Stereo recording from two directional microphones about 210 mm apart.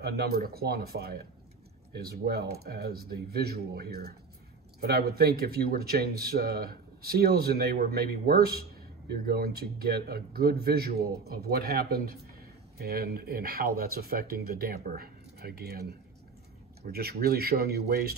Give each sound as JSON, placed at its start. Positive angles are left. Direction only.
{"t": 0.0, "sound": "speech", "side_deg": -50}